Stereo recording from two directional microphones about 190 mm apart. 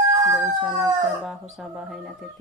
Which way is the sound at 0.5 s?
Centre (ahead or behind).